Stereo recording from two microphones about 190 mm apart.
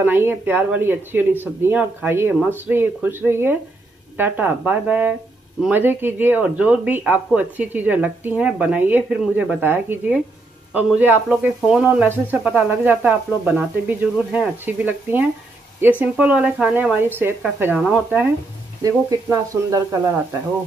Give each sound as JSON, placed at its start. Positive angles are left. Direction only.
{"t": 0.0, "sound": "speech", "side_deg": -10}
{"t": 18.8, "sound": "speech", "side_deg": -20}